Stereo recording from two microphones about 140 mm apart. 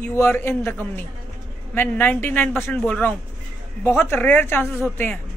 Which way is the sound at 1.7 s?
15° left (ahead or behind).